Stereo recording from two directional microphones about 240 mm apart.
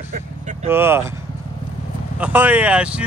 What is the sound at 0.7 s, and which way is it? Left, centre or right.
Speech, centre.